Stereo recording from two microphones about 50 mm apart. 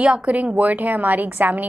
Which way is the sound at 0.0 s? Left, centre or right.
Right.